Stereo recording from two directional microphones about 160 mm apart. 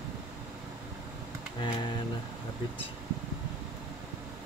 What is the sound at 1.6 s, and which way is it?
Speech, 30° left (ahead or behind).